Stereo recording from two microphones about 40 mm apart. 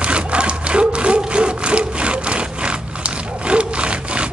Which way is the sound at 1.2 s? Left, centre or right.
Right.